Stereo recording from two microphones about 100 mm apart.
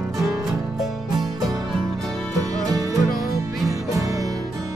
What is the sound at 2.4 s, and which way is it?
Music, 35° right (ahead or behind).